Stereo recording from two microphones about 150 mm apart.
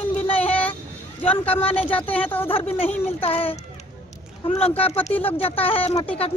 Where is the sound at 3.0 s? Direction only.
40° left (ahead or behind).